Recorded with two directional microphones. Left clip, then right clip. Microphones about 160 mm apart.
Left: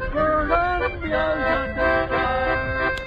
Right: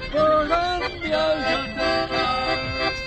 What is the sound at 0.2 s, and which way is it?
Music, 35° right (ahead or behind).